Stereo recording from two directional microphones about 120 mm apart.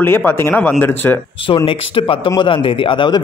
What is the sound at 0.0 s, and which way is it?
Speech, 20° left (ahead or behind).